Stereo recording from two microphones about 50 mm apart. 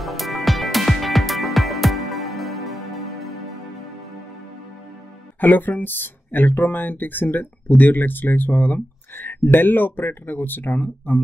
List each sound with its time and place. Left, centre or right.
0.0 s music: centre
5.4 s speech: left